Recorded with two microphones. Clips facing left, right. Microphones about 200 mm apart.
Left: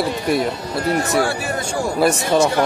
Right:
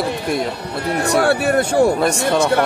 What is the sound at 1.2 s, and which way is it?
Speech, 60° right (ahead or behind).